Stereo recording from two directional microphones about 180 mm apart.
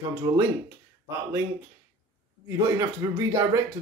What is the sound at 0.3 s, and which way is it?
Speech, 20° right (ahead or behind).